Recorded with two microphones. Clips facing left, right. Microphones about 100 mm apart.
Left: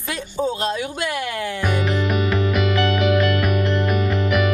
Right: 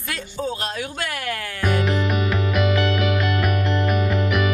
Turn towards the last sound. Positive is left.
turn(degrees=0)  # may be behind; listen again after turning